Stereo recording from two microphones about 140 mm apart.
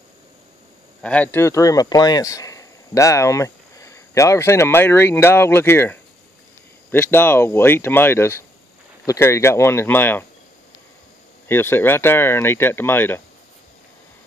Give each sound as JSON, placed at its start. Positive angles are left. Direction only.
{"t": 1.0, "sound": "speech", "side_deg": 10}
{"t": 11.4, "sound": "speech", "side_deg": 15}